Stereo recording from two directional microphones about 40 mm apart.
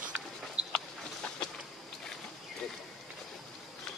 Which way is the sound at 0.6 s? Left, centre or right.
Right.